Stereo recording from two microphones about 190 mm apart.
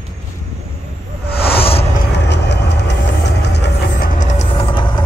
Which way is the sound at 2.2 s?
65° left (ahead or behind).